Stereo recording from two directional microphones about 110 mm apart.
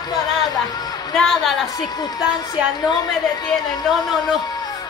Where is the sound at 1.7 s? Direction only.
40° left (ahead or behind).